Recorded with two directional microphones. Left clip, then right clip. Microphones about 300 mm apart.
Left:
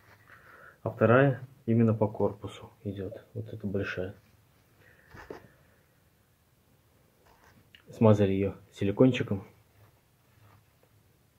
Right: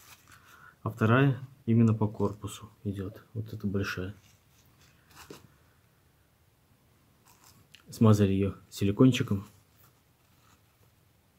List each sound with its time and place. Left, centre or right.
0.8 s speech: right
7.7 s speech: right